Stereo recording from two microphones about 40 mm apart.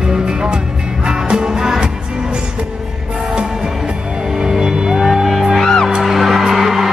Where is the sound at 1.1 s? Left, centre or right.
Centre.